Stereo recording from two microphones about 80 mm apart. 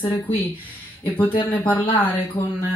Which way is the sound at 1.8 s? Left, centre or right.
Left.